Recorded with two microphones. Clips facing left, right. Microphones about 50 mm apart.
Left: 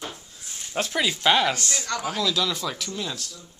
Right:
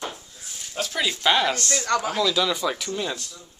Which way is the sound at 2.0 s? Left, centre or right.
Centre.